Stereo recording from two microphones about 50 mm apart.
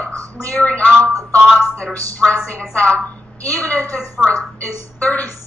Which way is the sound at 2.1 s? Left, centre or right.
Left.